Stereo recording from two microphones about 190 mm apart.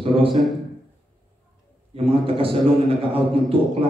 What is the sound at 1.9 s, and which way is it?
A man's voice, 30° right (ahead or behind).